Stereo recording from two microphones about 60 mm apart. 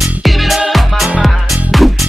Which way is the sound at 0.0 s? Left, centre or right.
Centre.